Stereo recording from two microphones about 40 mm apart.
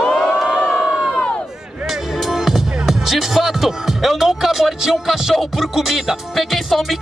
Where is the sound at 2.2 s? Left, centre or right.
Centre.